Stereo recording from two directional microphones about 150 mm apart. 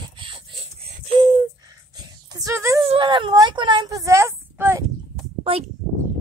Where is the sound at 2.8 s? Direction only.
30° right (ahead or behind).